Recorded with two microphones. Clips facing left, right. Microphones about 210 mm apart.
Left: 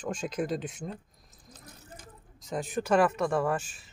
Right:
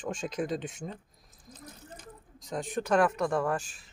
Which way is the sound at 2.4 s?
5° left (ahead or behind).